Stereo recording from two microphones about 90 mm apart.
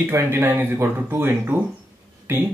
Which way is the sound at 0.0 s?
25° right (ahead or behind).